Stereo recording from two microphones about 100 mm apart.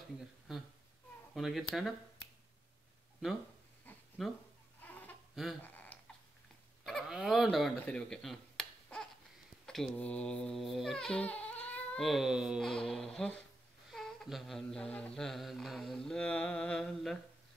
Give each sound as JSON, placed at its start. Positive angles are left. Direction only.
{"t": 0.5, "sound": "speech", "side_deg": 0}
{"t": 1.3, "sound": "humming", "side_deg": 0}
{"t": 4.2, "sound": "speech", "side_deg": 0}
{"t": 4.8, "sound": "a sound", "side_deg": 15}
{"t": 5.3, "sound": "a sound", "side_deg": -5}
{"t": 7.1, "sound": "fowl", "side_deg": 0}
{"t": 7.8, "sound": "a sound", "side_deg": 5}
{"t": 9.9, "sound": "speech", "side_deg": 10}
{"t": 12.0, "sound": "humming", "side_deg": -5}